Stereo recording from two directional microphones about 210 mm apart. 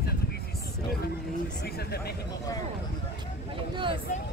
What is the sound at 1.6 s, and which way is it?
Speech, 50° left (ahead or behind).